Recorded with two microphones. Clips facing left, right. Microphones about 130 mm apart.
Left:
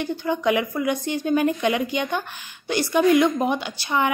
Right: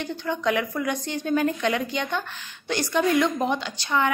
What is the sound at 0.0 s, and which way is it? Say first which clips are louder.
A woman's voice: left 3 dB; 10° left (ahead or behind).